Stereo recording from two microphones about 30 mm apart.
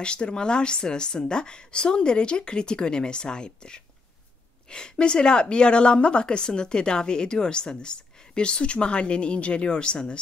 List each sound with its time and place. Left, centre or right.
0.0 s a woman's voice: left